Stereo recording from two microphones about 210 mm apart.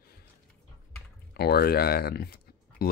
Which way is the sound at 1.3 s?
50° left (ahead or behind).